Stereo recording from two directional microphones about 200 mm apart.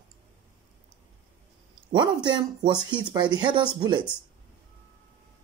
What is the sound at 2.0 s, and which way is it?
Speech, 20° right (ahead or behind).